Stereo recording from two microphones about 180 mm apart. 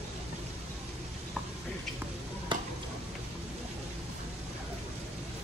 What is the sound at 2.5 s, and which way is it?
Stir, 25° right (ahead or behind).